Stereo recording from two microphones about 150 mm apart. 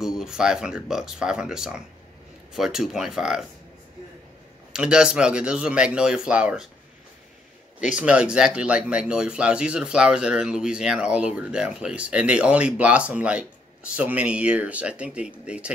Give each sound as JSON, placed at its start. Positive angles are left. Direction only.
{"t": 0.0, "sound": "speech", "side_deg": -5}
{"t": 4.7, "sound": "speech", "side_deg": -5}
{"t": 7.9, "sound": "speech", "side_deg": -5}